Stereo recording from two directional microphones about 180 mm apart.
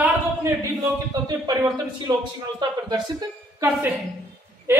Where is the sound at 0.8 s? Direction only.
20° right (ahead or behind).